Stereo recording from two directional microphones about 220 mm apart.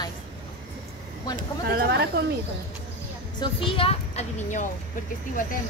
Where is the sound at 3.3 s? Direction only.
25° left (ahead or behind).